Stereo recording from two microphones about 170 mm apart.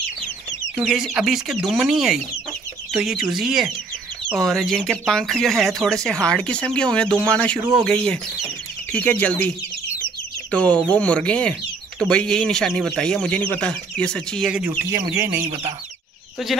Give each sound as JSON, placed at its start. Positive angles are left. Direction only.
{"t": 0.8, "sound": "speech", "side_deg": 0}
{"t": 10.5, "sound": "speech", "side_deg": 10}
{"t": 14.7, "sound": "speech", "side_deg": -15}
{"t": 15.4, "sound": "speech", "side_deg": -40}